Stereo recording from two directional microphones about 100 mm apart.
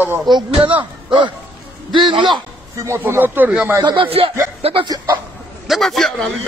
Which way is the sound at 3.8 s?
45° right (ahead or behind).